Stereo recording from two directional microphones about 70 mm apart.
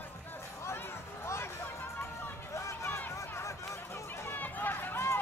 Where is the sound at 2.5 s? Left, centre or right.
Left.